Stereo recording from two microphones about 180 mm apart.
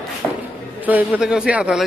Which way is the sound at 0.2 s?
5° right (ahead or behind).